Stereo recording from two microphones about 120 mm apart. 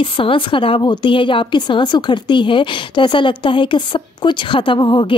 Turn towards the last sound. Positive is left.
turn(degrees=40)  # may be behind; listen again after turning